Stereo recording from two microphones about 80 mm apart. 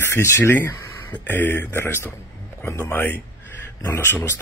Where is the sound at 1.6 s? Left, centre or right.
Left.